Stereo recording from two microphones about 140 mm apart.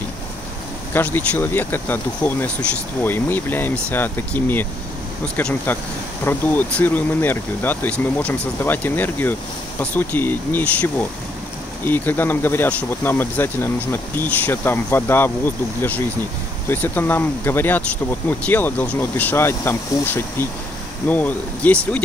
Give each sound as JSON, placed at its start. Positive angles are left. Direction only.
{"t": 0.9, "sound": "speech", "side_deg": 15}